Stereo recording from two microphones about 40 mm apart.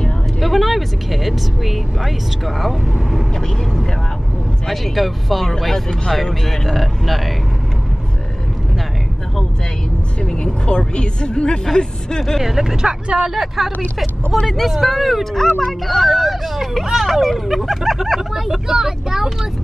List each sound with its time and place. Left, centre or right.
0.4 s speech: centre
3.3 s speech: centre
10.2 s speech: left
12.4 s speech: centre
17.1 s speech: centre